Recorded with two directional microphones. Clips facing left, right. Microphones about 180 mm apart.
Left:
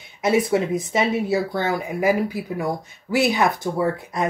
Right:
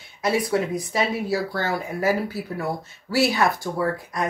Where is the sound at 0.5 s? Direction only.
25° left (ahead or behind).